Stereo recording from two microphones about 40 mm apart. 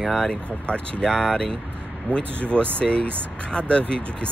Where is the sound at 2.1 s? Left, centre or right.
Right.